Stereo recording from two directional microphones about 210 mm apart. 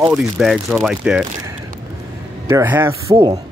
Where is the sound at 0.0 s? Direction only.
Centre (ahead or behind).